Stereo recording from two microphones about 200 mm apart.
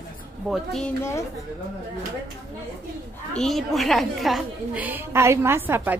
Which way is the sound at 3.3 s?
Centre (ahead or behind).